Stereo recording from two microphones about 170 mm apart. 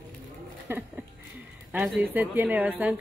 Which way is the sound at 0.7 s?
10° right (ahead or behind).